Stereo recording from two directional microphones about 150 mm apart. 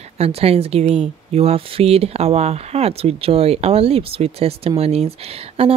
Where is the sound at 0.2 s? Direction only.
40° right (ahead or behind).